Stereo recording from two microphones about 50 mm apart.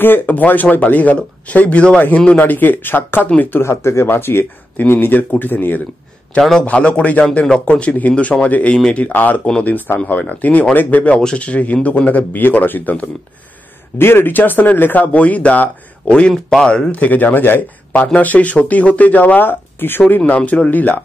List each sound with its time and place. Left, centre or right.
0.0 s a man's voice: left
3.6 s speech: left
6.6 s a man's voice: left
11.1 s speech: centre
11.4 s speech: left
13.9 s speech: left
16.1 s speech: centre
16.9 s speech: left
20.3 s a man's voice: left